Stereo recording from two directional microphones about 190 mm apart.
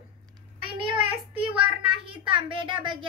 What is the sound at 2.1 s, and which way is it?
A child's voice, 25° right (ahead or behind).